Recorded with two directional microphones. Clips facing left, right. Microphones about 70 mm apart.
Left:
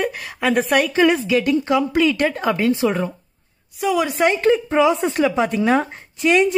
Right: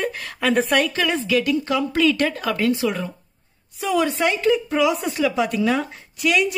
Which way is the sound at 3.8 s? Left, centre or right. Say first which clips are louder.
Left 2 dB; centre.